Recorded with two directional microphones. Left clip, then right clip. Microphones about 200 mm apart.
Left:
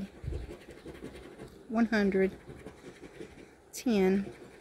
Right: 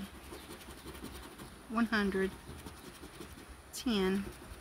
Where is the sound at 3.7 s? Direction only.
25° left (ahead or behind).